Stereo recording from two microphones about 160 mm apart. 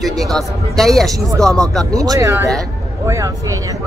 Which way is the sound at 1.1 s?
20° right (ahead or behind).